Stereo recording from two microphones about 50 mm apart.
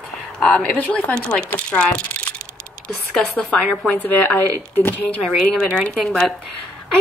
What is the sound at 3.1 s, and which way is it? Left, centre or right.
Speech, centre.